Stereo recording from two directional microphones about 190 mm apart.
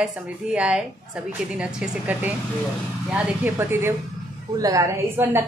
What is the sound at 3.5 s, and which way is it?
A woman's voice, 10° right (ahead or behind).